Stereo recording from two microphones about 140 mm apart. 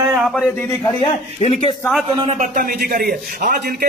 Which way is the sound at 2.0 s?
40° right (ahead or behind).